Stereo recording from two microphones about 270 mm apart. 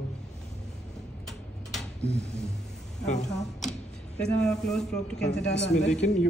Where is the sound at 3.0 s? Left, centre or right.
Left.